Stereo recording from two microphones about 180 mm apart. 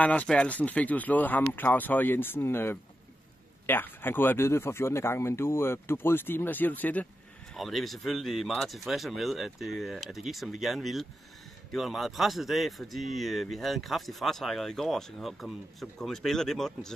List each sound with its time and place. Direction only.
0.0 s a man's voice: 10° left (ahead or behind)